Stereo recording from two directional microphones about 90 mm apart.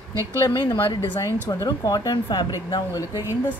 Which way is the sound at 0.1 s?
35° right (ahead or behind).